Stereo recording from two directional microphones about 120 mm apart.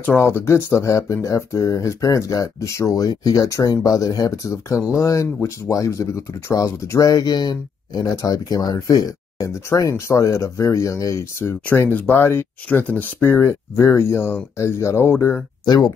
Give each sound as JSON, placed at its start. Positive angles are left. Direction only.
{"t": 0.0, "sound": "speech", "side_deg": 20}
{"t": 15.6, "sound": "speech", "side_deg": 35}